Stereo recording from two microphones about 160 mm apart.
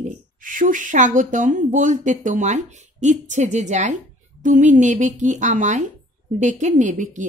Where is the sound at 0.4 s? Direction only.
55° right (ahead or behind).